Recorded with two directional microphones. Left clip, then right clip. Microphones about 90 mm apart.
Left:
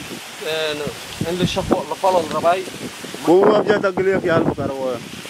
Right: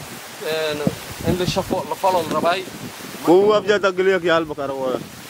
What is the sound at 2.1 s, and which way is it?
Speech, 70° right (ahead or behind).